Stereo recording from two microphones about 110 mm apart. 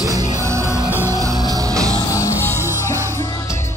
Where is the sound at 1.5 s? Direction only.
30° right (ahead or behind).